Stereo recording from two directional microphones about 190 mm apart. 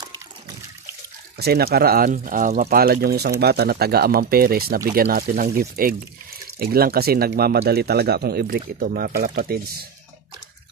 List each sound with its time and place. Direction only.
1.4 s speech: 55° right (ahead or behind)